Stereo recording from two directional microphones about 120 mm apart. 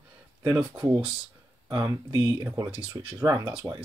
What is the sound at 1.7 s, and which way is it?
Speech, 35° right (ahead or behind).